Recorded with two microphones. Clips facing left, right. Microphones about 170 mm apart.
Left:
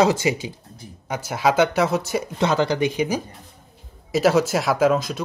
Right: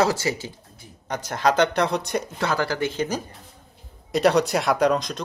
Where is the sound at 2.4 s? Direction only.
20° left (ahead or behind).